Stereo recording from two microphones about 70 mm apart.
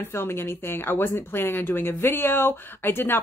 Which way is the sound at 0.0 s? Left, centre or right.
Left.